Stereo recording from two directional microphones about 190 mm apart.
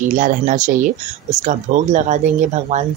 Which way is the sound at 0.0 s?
45° right (ahead or behind).